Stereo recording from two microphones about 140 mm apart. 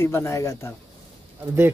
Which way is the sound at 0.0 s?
20° left (ahead or behind).